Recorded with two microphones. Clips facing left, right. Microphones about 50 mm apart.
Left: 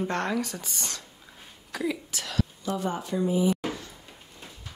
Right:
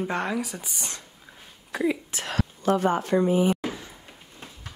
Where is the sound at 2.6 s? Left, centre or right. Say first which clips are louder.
Right 7 dB; right.